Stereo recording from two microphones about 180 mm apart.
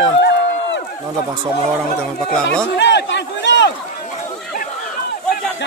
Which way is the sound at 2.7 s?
75° left (ahead or behind).